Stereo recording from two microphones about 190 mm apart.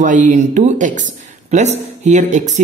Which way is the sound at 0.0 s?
40° right (ahead or behind).